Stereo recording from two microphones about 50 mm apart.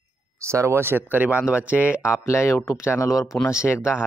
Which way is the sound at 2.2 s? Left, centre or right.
Left.